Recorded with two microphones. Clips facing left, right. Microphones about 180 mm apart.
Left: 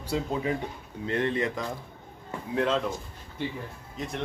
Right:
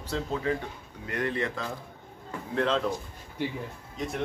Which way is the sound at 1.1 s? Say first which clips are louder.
Left 3 dB; 25° left (ahead or behind).